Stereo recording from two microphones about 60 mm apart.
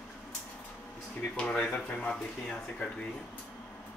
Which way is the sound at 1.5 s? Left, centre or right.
Centre.